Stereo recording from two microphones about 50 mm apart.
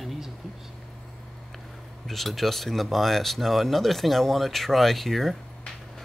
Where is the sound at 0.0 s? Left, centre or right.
Centre.